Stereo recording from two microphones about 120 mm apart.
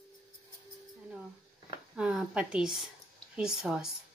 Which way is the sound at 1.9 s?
10° right (ahead or behind).